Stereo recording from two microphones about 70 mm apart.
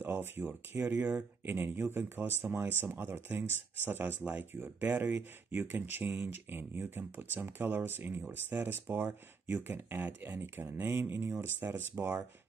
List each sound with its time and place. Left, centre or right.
0.0 s speech: right
4.5 s speech: right